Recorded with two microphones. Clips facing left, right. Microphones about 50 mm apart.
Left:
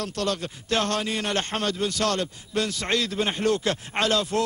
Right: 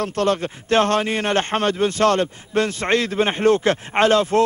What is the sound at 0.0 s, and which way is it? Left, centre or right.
A man's voice, right.